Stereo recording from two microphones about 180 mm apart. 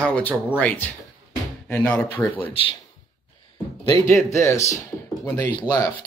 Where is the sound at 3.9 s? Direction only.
15° left (ahead or behind).